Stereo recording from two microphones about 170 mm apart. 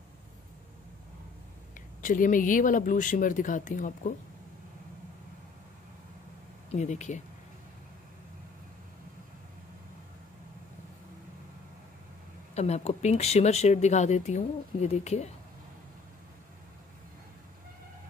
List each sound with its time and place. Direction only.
2.0 s speech: 50° left (ahead or behind)
6.7 s speech: 40° left (ahead or behind)
12.5 s speech: 40° left (ahead or behind)